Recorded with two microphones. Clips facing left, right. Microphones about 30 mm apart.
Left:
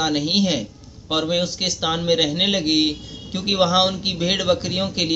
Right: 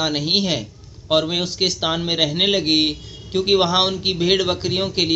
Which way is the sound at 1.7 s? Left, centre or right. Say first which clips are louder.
Right 1 dB; centre.